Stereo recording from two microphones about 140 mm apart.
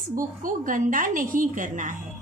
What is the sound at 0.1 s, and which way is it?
A woman's voice, 75° right (ahead or behind).